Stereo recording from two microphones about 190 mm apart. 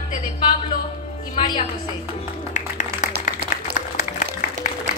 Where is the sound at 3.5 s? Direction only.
40° left (ahead or behind).